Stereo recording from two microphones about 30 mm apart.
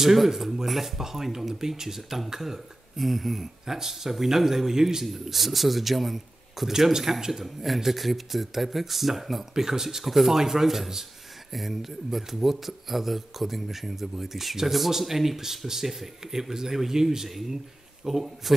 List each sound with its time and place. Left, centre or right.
0.0 s speech: centre
5.0 s speech: centre
7.4 s speech: centre